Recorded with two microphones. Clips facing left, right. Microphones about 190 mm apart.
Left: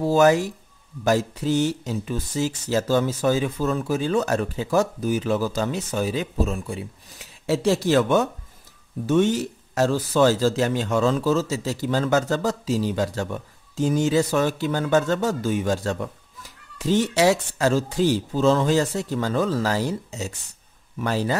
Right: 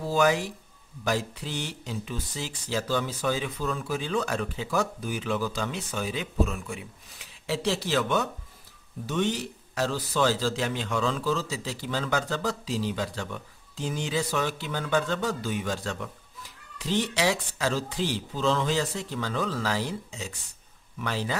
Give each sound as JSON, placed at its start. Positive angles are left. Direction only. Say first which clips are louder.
{"t": 0.0, "sound": "speech", "louder": "left 7 dB", "side_deg": 45}